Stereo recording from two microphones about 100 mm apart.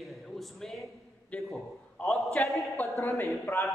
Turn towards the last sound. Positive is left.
turn(degrees=30)  # may be behind; listen again after turning